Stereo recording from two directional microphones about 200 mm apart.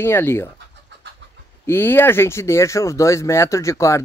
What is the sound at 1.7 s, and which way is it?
Speech, 10° left (ahead or behind).